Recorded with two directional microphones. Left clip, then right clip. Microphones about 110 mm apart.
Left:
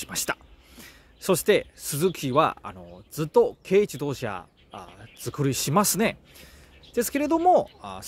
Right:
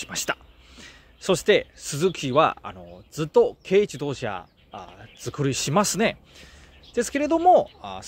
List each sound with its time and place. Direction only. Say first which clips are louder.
0.0 s speech: right 2 dB; 15° left (ahead or behind)